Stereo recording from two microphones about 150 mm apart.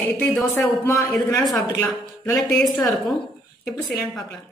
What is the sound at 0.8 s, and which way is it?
A man's voice, 15° left (ahead or behind).